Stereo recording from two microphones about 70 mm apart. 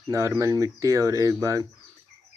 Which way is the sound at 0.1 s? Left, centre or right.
Right.